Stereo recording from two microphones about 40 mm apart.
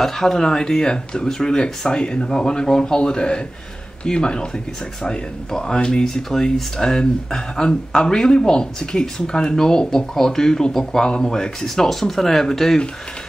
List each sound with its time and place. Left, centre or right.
0.0 s speech: centre